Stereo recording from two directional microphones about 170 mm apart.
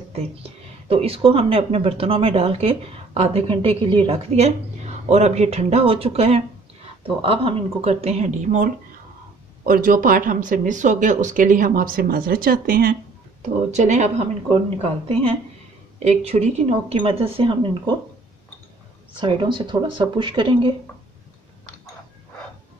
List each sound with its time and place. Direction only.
0.1 s speech: 35° right (ahead or behind); by 12.9 s 60° right (ahead or behind)
13.7 s speech: 45° right (ahead or behind)
19.1 s speech: 30° right (ahead or behind)